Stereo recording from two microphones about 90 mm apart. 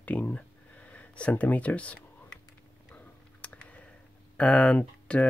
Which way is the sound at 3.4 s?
15° left (ahead or behind).